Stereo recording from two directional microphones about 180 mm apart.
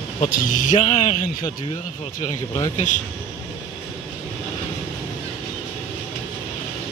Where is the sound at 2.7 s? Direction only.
45° left (ahead or behind).